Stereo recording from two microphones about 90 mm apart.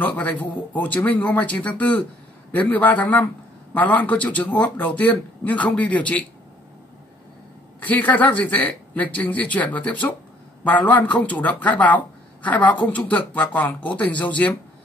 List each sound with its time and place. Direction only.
0.0 s a man's voice: 15° left (ahead or behind)
7.8 s a man's voice: 20° left (ahead or behind)